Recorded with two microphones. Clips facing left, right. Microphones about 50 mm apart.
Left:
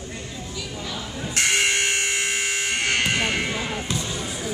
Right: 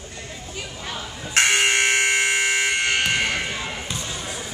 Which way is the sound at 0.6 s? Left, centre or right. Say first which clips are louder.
Even; right.